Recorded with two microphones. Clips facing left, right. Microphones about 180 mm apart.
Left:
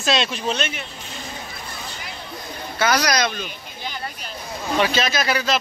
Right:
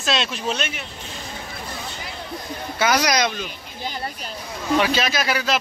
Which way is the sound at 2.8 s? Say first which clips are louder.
Even; 20° right (ahead or behind).